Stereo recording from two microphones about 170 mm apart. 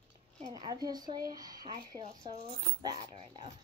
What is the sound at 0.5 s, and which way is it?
Speech, 25° right (ahead or behind).